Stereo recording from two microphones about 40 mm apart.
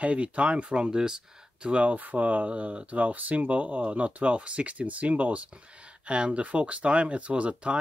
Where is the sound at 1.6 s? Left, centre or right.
Right.